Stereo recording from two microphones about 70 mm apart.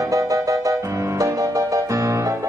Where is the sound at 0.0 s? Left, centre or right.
Right.